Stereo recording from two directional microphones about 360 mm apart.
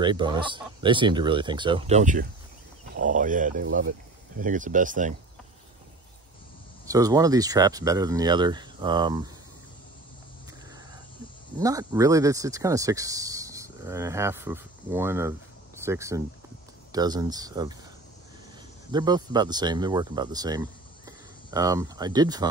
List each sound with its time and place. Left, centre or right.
0.0 s speech: centre
6.9 s speech: centre
11.6 s speech: centre
18.9 s speech: centre